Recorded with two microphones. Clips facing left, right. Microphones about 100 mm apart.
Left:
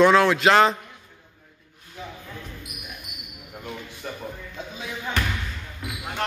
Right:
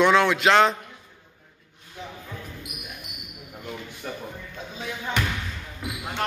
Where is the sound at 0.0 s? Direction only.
Centre (ahead or behind).